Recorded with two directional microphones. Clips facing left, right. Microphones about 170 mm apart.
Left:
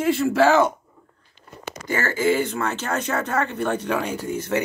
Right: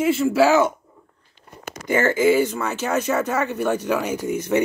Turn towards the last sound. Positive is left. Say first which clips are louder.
# right 4 dB
turn(degrees=-15)  # may be behind; listen again after turning